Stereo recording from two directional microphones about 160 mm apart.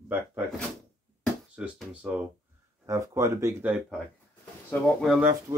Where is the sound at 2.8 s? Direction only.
20° right (ahead or behind).